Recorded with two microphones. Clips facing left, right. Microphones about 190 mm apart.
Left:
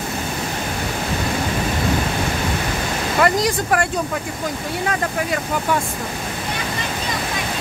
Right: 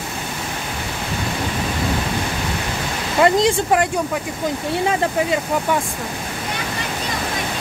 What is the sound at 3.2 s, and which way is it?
Speech, 25° right (ahead or behind).